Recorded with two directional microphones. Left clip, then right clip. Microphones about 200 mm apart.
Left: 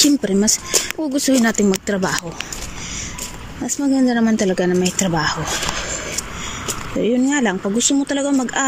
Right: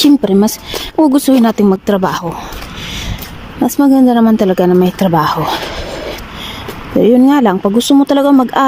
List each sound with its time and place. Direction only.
0.0 s speech: 20° right (ahead or behind)
3.6 s speech: 20° right (ahead or behind)
7.0 s speech: 25° right (ahead or behind)